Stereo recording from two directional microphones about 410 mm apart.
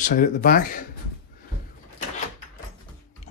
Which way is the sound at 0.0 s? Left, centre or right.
Centre.